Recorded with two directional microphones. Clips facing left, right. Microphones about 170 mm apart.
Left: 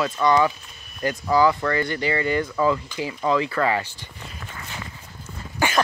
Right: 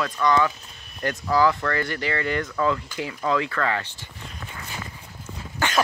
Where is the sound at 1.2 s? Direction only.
Centre (ahead or behind).